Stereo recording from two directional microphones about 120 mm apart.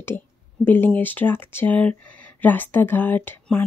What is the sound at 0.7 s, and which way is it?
Speech, 15° left (ahead or behind).